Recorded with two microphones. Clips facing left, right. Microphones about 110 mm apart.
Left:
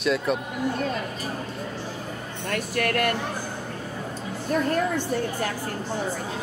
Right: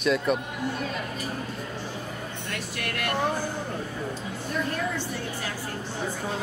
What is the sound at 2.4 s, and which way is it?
Speech, 50° left (ahead or behind).